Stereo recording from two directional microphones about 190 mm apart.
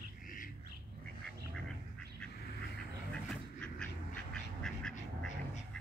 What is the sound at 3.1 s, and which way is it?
Duck, 5° left (ahead or behind).